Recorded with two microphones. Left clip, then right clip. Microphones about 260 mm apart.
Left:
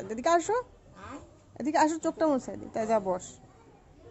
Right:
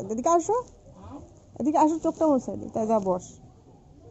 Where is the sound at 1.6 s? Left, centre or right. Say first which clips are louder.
Right 3 dB; centre.